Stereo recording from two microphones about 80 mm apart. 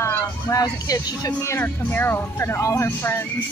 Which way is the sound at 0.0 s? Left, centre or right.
Left.